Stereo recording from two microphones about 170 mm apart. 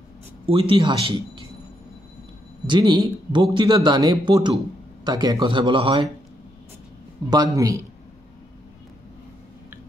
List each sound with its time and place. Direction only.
0.5 s speech: 30° right (ahead or behind)
2.6 s speech: 25° right (ahead or behind)
7.2 s speech: 20° right (ahead or behind)